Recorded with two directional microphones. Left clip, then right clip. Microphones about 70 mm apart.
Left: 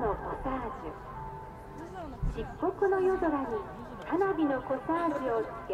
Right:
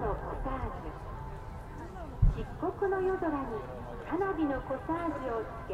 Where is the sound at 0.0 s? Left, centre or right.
Left.